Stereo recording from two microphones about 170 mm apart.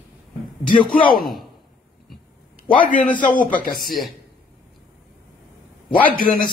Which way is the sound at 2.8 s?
50° left (ahead or behind).